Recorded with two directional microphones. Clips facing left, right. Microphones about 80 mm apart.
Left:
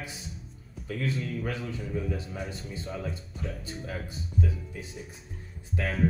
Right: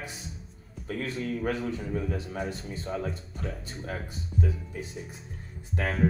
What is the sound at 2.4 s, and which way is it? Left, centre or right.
Speech, centre.